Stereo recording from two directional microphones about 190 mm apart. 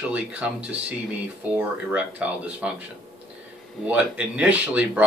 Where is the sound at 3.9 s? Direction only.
10° right (ahead or behind).